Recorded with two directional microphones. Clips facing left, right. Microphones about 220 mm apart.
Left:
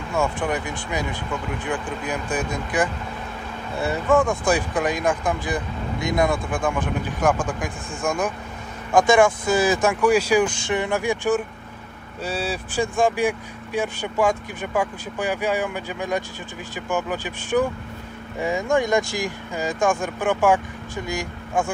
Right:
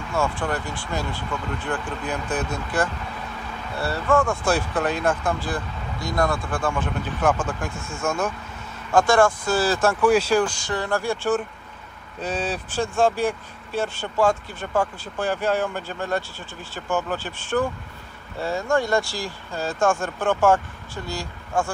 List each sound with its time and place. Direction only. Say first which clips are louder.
0.1 s speech: left 1 dB; 20° left (ahead or behind)